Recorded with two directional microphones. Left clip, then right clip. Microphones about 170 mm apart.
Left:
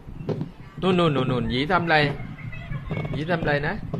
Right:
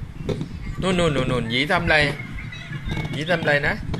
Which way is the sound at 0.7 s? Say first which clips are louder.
Even; 20° left (ahead or behind).